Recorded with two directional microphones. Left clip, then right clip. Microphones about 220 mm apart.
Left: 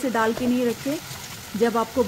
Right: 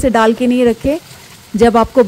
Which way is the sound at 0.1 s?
40° right (ahead or behind).